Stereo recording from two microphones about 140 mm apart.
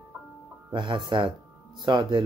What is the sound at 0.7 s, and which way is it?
Speech, 35° right (ahead or behind).